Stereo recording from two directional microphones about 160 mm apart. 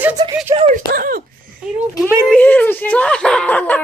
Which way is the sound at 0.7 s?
65° right (ahead or behind).